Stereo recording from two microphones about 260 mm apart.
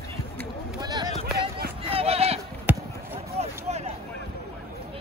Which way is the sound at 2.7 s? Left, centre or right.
Centre.